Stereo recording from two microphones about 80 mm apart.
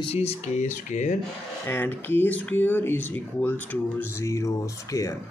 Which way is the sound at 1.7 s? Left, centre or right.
Left.